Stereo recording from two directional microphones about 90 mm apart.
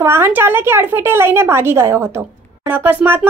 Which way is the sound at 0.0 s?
25° right (ahead or behind).